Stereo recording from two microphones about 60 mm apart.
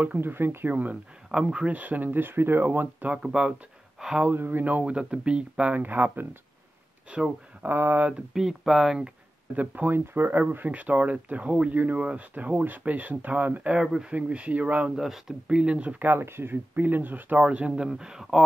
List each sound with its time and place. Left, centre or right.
0.0 s speech: right
0.3 s speech: right
1.3 s speech: centre; by 3.1 s right
3.1 s speech: centre
4.4 s speech: right
7.1 s speech: centre
7.6 s speech: right
8.1 s speech: centre
9.6 s speech: right
13.7 s speech: centre
14.1 s speech: right
15.0 s speech: centre
16.0 s speech: right
17.4 s speech: centre